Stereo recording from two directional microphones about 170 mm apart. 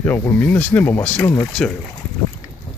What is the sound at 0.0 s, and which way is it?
Speech, 10° left (ahead or behind).